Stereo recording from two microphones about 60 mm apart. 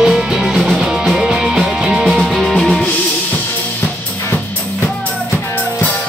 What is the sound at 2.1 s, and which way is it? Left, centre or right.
Music, centre.